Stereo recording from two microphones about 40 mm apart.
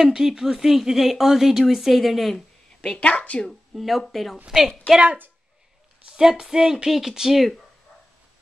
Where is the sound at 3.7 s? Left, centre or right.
Centre.